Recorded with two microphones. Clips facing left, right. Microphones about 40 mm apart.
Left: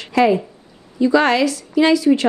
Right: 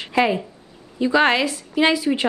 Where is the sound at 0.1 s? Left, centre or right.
Right.